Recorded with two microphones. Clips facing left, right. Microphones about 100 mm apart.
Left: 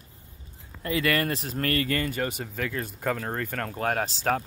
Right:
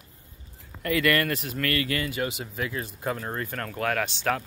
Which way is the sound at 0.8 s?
25° left (ahead or behind).